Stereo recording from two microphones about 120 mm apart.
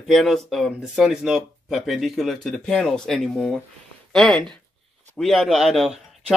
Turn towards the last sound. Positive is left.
turn(degrees=-5)  # may be behind; listen again after turning